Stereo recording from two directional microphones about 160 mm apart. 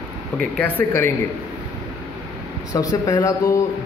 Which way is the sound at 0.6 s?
10° left (ahead or behind).